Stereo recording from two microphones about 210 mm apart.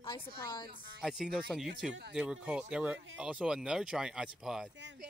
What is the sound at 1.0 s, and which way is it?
Speech, centre (ahead or behind).